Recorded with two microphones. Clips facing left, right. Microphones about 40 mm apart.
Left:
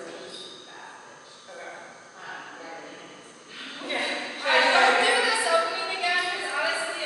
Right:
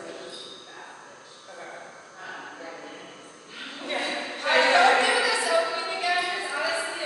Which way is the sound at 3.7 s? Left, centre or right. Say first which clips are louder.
Even; centre.